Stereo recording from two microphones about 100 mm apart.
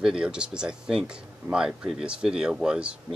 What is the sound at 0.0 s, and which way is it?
Speech, 10° right (ahead or behind).